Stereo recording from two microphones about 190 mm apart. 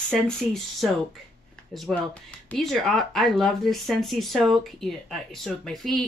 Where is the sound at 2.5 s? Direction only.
Centre (ahead or behind).